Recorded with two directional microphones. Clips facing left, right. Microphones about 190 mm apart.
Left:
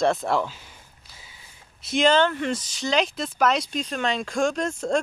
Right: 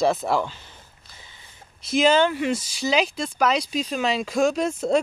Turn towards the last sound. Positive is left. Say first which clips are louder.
# right 3 dB
turn(degrees=-5)  # may be behind; listen again after turning